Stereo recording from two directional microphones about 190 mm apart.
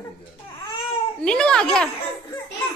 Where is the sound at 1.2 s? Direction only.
5° left (ahead or behind).